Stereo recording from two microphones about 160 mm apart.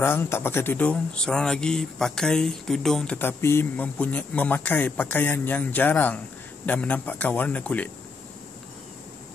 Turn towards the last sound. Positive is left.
turn(degrees=10)  # may be behind; listen again after turning